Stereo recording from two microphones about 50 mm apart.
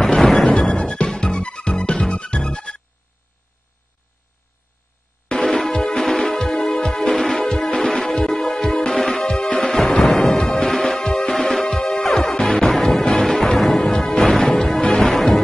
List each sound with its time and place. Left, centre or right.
0.0 s music: centre
5.3 s music: centre